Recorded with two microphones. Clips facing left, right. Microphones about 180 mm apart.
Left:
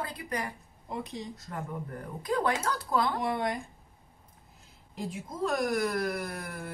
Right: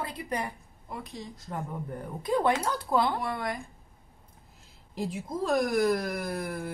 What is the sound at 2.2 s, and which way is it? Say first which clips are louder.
Speech: right 3 dB; 25° right (ahead or behind).